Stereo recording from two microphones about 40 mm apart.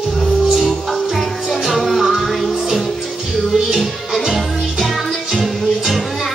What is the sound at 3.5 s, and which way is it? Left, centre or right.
Music, centre.